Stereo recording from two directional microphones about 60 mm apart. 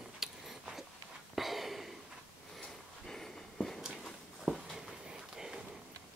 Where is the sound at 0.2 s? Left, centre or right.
Centre.